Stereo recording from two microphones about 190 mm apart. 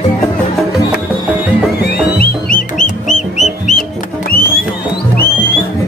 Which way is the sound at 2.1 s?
45° left (ahead or behind).